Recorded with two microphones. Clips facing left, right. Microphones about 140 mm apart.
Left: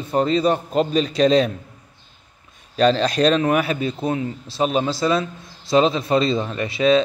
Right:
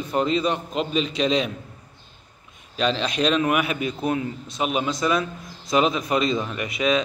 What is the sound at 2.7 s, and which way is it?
A man's voice, 40° left (ahead or behind).